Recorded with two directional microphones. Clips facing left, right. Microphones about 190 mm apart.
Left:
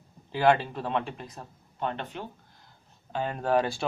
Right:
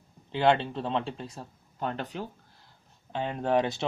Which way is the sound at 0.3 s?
25° right (ahead or behind).